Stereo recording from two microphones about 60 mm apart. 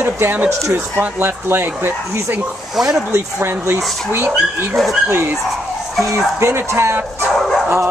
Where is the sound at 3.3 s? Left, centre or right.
Right.